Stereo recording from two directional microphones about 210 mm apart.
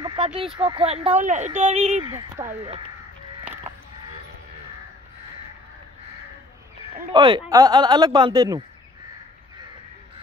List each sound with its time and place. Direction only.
0.0 s a sound: 20° right (ahead or behind)
0.7 s speech: 25° right (ahead or behind)
2.0 s speech: 20° right (ahead or behind)
7.1 s speech: 25° right (ahead or behind)